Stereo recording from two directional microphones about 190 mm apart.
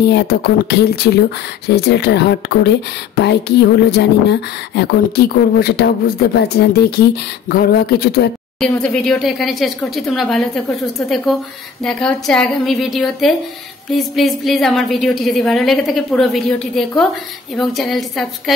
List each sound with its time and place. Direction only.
0.0 s speech: 60° left (ahead or behind)
8.5 s a woman's voice: 5° left (ahead or behind)